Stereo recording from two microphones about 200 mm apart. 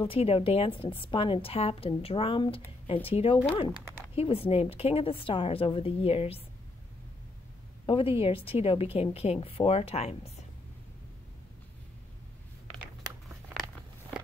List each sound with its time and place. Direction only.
0.0 s a woman's voice: 30° left (ahead or behind)
3.7 s speech: 10° right (ahead or behind)
4.1 s a woman's voice: 30° left (ahead or behind)
7.8 s a woman's voice: 25° left (ahead or behind)